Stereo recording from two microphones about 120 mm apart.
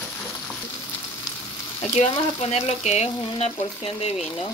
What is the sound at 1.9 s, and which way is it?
Frying, 60° left (ahead or behind).